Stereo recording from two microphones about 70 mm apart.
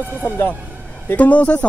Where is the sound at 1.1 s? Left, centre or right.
Left.